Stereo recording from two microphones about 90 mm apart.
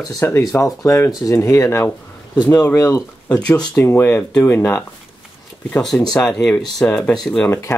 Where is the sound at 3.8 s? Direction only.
25° left (ahead or behind).